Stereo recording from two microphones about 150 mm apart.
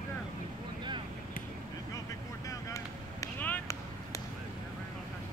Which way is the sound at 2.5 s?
20° left (ahead or behind).